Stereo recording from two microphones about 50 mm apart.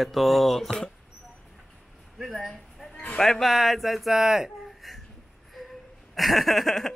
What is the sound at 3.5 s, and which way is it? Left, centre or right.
Speech, centre.